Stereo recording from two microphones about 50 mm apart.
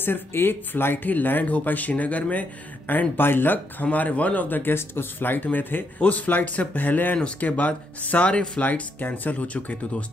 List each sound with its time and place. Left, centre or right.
0.0 s speech: left
2.9 s speech: left
3.8 s speech: left